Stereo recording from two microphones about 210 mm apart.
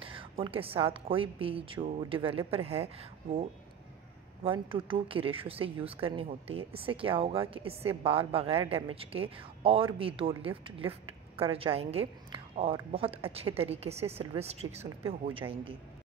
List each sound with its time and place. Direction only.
0.0 s a woman's voice: 25° right (ahead or behind)